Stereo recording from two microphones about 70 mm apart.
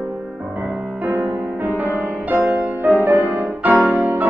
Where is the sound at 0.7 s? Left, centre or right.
Right.